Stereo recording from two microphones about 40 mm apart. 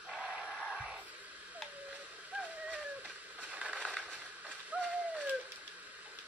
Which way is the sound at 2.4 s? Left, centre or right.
Right.